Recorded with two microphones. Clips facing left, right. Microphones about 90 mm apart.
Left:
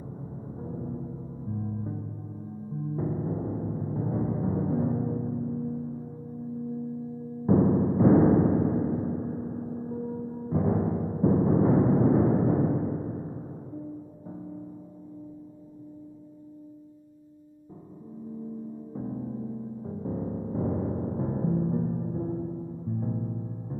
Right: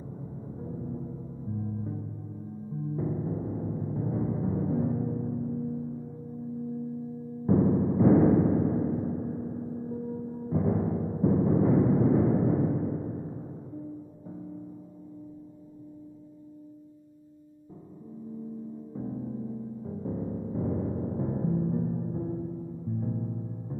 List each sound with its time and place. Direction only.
0.2 s music: 25° left (ahead or behind)
3.0 s gong: 25° left (ahead or behind)
7.4 s music: 30° left (ahead or behind)
18.9 s music: 25° left (ahead or behind)